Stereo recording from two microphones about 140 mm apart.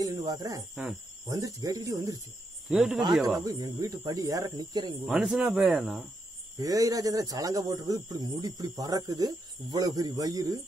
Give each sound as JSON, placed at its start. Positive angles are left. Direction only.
{"t": 0.0, "sound": "speech", "side_deg": -25}
{"t": 2.7, "sound": "speech", "side_deg": -5}
{"t": 3.4, "sound": "speech", "side_deg": -30}
{"t": 5.0, "sound": "speech", "side_deg": -5}
{"t": 6.6, "sound": "speech", "side_deg": -25}